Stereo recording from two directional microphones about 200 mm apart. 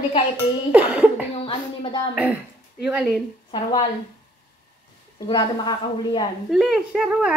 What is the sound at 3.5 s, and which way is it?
Speech, 25° left (ahead or behind).